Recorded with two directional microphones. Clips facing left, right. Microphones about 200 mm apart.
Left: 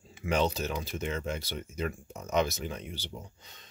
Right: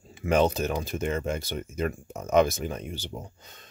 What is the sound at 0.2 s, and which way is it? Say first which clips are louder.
Speech: right 6 dB; 50° right (ahead or behind).